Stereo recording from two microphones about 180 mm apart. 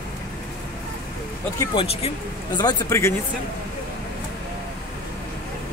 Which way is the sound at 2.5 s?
20° left (ahead or behind).